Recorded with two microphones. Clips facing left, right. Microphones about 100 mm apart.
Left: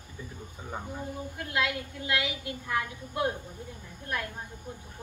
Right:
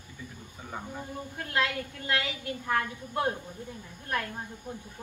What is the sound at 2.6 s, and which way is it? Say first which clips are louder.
Speech: right 3 dB; 35° right (ahead or behind).